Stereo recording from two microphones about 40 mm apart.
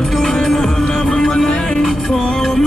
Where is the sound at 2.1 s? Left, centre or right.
Centre.